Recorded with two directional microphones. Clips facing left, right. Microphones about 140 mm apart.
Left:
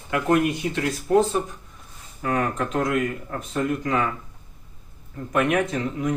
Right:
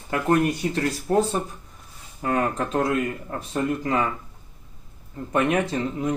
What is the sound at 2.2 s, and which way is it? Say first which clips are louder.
Speech: right 1 dB; 30° right (ahead or behind).